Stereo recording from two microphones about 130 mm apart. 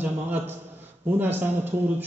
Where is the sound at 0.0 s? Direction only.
15° right (ahead or behind).